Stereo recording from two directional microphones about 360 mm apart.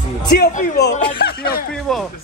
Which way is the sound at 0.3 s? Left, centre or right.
Left.